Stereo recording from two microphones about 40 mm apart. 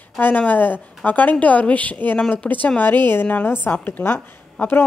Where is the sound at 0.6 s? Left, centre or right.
Left.